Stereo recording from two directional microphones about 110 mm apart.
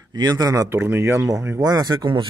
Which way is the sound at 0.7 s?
20° right (ahead or behind).